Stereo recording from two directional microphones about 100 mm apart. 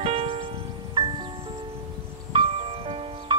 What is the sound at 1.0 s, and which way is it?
Music, 50° right (ahead or behind).